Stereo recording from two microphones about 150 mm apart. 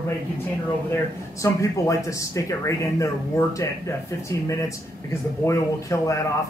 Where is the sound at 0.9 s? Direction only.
20° left (ahead or behind).